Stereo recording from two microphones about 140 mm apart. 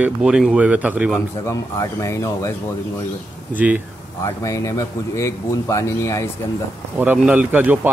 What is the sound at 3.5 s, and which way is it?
Speech, 10° right (ahead or behind).